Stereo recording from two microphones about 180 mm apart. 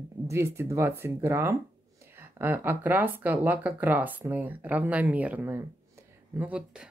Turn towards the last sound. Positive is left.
turn(degrees=-5)  # may be behind; listen again after turning